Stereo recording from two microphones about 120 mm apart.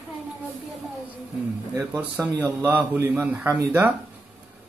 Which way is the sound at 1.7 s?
20° right (ahead or behind).